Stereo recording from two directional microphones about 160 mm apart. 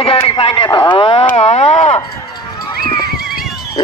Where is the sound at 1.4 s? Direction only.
45° left (ahead or behind).